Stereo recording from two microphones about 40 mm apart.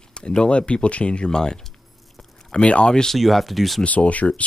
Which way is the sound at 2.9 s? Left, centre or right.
Centre.